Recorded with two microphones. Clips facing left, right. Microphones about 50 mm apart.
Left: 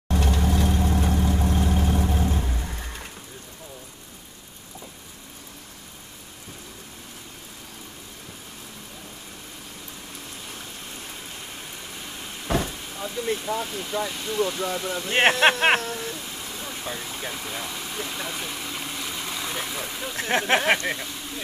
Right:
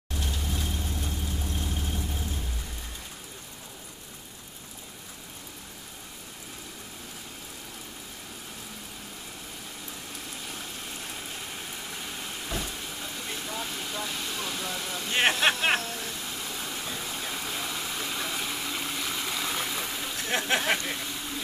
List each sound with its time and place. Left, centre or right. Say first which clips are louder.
0.1 s vehicle: left 10 dB; left
10.4 s vehicle: even; centre
13.2 s a sound: left 10 dB; centre
14.1 s speech: left 8 dB; centre
15.4 s speech: left 6 dB; left
16.0 s vehicle: left 2 dB; centre
20.2 s speech: left 6 dB; left
20.8 s speech: left 5 dB; centre